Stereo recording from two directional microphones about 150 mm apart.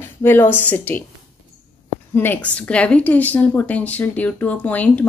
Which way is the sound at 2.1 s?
10° left (ahead or behind).